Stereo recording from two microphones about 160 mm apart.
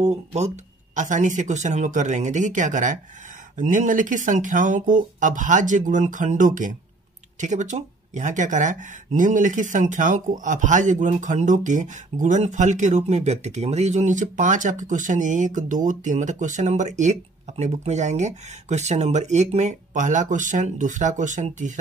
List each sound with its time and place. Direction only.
0.0 s speech: 45° right (ahead or behind)